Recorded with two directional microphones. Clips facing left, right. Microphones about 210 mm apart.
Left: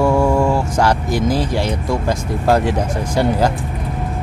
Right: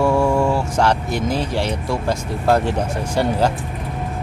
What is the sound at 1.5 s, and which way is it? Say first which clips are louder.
Speech: left 2 dB; 15° left (ahead or behind).